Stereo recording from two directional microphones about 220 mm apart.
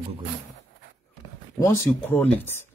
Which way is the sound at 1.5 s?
15° left (ahead or behind).